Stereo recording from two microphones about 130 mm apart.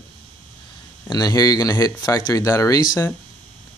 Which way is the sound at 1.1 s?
30° left (ahead or behind).